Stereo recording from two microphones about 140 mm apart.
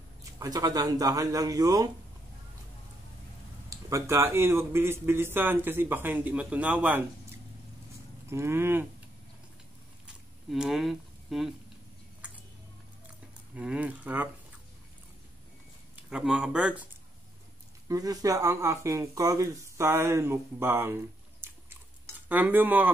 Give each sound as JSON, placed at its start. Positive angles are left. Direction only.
{"t": 0.2, "sound": "speech", "side_deg": -25}
{"t": 3.7, "sound": "a man's voice", "side_deg": -20}
{"t": 10.5, "sound": "speech", "side_deg": 0}
{"t": 13.6, "sound": "a man's voice", "side_deg": -10}
{"t": 16.0, "sound": "a man's voice", "side_deg": -5}
{"t": 17.8, "sound": "speech", "side_deg": -25}